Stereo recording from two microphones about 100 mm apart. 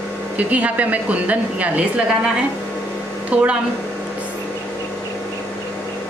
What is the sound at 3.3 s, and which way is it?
Speech, 15° right (ahead or behind).